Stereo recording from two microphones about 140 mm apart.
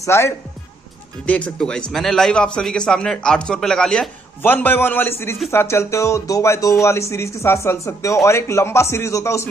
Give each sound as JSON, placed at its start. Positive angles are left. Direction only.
{"t": 0.0, "sound": "a man's voice", "side_deg": 20}
{"t": 4.4, "sound": "a man's voice", "side_deg": 15}